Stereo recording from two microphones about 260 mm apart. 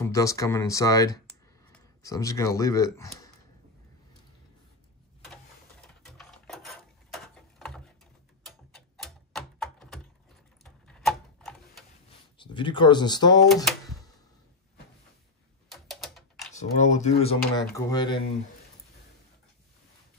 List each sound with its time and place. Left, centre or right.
0.0 s speech: centre
6.0 s a sound: centre
10.6 s tick-tock: centre
12.4 s speech: centre
15.7 s typing: centre
16.5 s speech: left